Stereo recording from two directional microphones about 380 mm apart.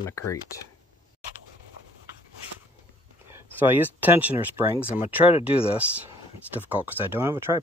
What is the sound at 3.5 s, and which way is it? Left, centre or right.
Speech, centre.